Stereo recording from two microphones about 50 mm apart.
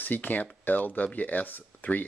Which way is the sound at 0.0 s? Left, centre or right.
Left.